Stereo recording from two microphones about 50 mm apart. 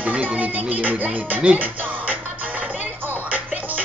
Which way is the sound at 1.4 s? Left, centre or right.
Right.